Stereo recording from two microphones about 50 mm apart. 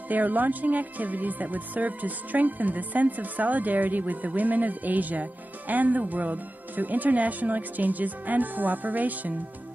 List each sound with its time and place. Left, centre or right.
0.1 s speech: right